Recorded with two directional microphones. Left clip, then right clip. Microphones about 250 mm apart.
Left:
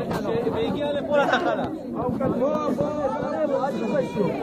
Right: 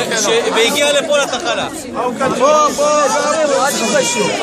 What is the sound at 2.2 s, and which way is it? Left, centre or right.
Speech, right.